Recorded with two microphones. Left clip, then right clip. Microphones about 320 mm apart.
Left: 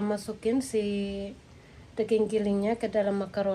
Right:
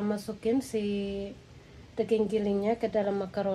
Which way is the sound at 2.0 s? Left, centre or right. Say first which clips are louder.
Left 1 dB; left.